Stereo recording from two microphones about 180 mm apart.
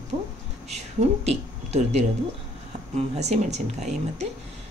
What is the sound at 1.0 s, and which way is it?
Speech, 35° right (ahead or behind).